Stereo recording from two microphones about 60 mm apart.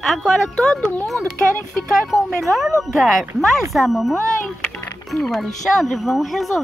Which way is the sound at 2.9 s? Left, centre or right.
Centre.